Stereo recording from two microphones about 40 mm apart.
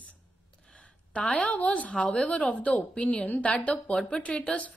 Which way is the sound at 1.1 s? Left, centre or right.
Left.